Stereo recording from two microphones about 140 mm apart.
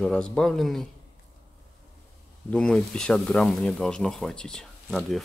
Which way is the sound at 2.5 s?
5° left (ahead or behind).